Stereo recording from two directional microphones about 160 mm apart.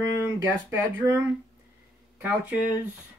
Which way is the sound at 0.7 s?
15° right (ahead or behind).